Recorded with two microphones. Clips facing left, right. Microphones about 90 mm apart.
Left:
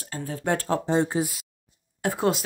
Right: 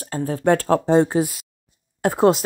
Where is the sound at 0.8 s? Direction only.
55° right (ahead or behind).